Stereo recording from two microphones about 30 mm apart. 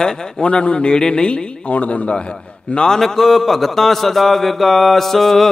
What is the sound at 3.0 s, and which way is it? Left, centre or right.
A man's voice, centre.